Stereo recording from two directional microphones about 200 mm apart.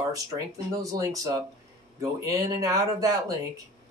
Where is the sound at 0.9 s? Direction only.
15° right (ahead or behind).